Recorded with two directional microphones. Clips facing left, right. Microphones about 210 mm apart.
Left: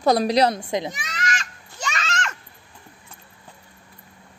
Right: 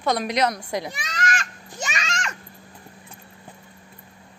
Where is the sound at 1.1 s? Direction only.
50° right (ahead or behind).